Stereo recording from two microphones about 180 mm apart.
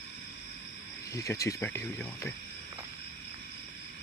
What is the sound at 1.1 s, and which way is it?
Speech, 15° left (ahead or behind).